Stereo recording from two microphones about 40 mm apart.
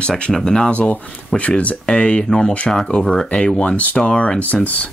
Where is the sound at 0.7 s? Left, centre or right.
Left.